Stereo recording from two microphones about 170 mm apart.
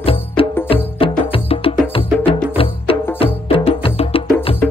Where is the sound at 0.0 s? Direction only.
35° left (ahead or behind).